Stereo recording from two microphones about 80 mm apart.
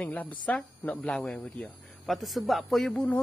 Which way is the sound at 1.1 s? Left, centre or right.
Centre.